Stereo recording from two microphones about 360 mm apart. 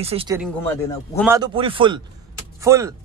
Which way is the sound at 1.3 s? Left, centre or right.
Centre.